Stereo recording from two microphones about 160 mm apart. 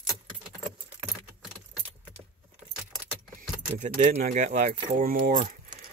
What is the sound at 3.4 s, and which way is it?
Speech, 55° right (ahead or behind).